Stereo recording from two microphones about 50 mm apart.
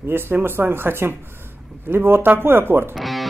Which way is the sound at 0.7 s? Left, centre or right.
Right.